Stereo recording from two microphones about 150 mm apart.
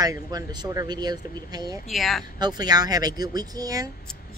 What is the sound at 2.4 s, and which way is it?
Speech, 25° right (ahead or behind).